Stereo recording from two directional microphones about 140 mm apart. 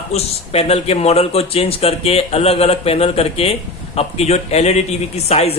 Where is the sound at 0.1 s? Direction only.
45° left (ahead or behind).